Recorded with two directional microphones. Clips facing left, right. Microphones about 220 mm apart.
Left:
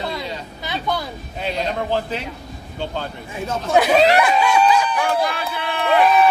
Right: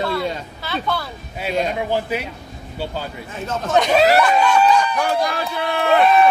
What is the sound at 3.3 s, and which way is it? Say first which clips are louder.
Speech: left 1 dB; 10° left (ahead or behind).